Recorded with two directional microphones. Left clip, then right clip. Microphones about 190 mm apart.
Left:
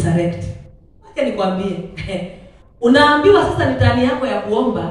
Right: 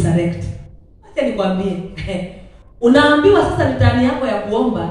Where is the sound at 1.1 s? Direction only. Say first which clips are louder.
Even; 25° left (ahead or behind).